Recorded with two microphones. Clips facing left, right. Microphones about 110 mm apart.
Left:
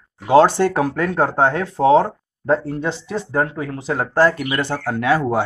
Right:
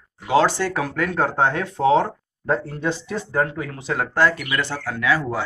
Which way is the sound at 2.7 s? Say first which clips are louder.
Left 2 dB; 25° left (ahead or behind).